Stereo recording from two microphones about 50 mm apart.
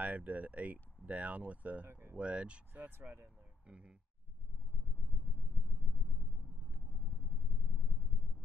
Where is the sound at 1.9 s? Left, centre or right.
Right.